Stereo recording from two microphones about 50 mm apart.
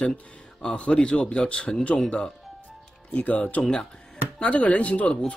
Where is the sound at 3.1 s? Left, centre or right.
Left.